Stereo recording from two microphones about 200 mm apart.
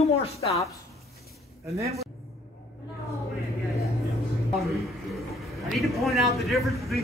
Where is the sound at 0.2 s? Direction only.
30° left (ahead or behind).